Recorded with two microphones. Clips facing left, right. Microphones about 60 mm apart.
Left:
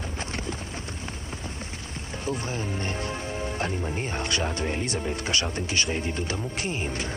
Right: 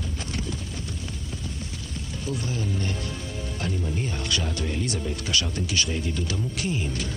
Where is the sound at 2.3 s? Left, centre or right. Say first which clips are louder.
Even; left.